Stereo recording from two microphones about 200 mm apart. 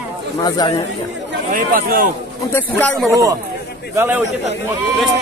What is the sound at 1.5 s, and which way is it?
Speech, 45° right (ahead or behind).